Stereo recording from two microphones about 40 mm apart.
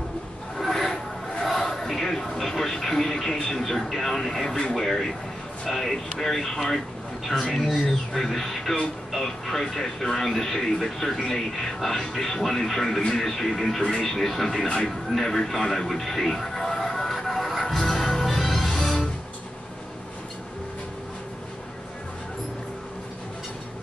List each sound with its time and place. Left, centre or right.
0.6 s a sound: centre
1.7 s television: centre
3.4 s a man's voice: centre
8.1 s speech: centre
14.7 s television: centre